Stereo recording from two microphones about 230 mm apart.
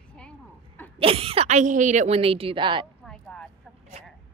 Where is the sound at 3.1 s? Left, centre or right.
Centre.